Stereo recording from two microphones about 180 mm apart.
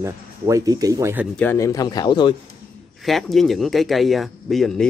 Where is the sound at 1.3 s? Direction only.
15° left (ahead or behind).